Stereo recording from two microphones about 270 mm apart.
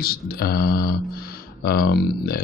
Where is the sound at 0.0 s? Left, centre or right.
Left.